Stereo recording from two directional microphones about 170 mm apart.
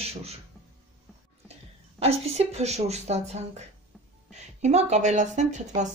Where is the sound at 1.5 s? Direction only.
35° right (ahead or behind).